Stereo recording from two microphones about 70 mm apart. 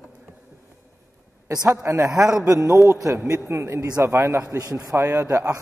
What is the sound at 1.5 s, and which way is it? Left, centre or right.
A man's voice, right.